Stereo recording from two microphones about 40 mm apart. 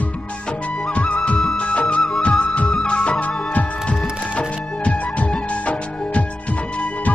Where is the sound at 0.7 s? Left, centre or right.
Left.